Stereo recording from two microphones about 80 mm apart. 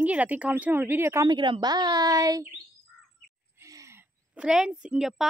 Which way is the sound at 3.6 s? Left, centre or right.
Right.